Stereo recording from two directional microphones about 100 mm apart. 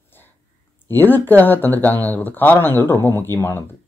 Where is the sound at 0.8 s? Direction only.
20° left (ahead or behind).